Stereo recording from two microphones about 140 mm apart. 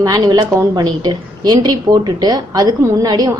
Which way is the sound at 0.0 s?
25° right (ahead or behind).